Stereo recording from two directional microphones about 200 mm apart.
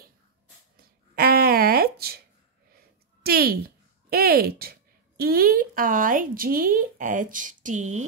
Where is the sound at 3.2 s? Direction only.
50° right (ahead or behind).